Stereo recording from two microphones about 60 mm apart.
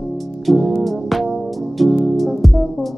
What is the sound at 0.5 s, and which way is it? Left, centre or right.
Music, centre.